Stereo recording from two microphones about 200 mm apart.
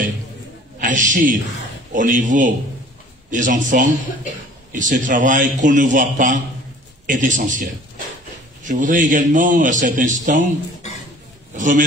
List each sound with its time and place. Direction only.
0.7 s a man's voice: 40° right (ahead or behind)
8.6 s a man's voice: 40° right (ahead or behind)
11.5 s a man's voice: 40° right (ahead or behind)